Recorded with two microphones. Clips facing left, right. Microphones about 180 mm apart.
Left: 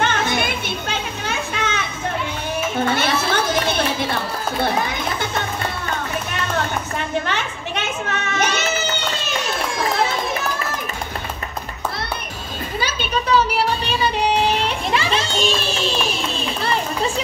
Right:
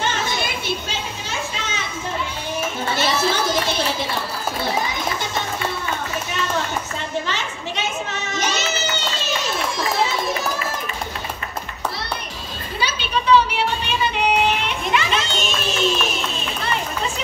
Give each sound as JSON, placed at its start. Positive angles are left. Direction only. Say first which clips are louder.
{"t": 0.0, "sound": "children playing", "louder": "left 4 dB", "side_deg": 55}
{"t": 2.9, "sound": "speech", "louder": "left 1 dB", "side_deg": 60}
{"t": 7.2, "sound": "children playing", "louder": "left 2 dB", "side_deg": 55}
{"t": 13.8, "sound": "a sound", "louder": "left 1 dB", "side_deg": 35}